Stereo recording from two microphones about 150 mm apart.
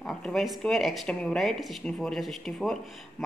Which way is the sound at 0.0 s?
Centre (ahead or behind).